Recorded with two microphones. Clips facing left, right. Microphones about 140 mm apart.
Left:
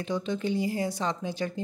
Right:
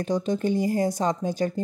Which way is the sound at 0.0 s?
40° right (ahead or behind).